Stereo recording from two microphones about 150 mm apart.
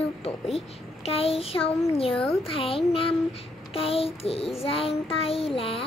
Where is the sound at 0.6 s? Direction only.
40° left (ahead or behind).